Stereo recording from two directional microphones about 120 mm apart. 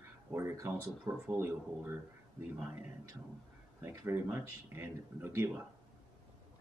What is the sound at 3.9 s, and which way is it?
Speech, 20° right (ahead or behind).